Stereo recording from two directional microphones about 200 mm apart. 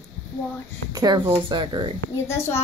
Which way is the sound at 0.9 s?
20° right (ahead or behind).